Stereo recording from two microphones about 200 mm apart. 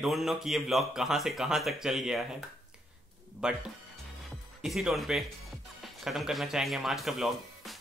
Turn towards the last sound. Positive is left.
turn(degrees=0)  # may be behind; listen again after turning